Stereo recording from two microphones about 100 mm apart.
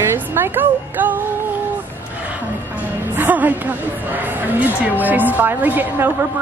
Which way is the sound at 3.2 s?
15° right (ahead or behind).